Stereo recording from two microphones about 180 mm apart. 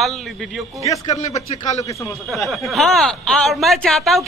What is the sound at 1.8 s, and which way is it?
Speech, 15° left (ahead or behind).